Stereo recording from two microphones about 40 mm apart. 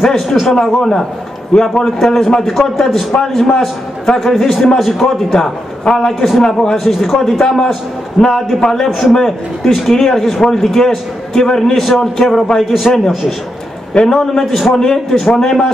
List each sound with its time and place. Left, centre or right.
0.0 s a man's voice: centre
8.2 s a man's voice: left
8.5 s a man's voice: centre
8.8 s a man's voice: centre